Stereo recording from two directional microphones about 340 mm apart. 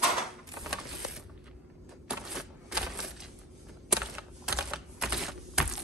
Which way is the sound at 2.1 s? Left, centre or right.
Centre.